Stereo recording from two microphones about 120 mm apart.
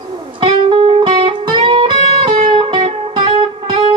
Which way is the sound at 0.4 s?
45° right (ahead or behind).